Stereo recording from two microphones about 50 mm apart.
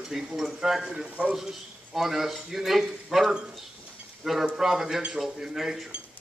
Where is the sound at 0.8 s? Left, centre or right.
Centre.